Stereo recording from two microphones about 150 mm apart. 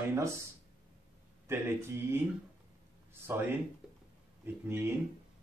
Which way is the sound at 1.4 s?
15° right (ahead or behind).